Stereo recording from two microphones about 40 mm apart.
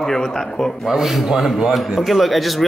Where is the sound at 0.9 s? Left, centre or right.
Centre.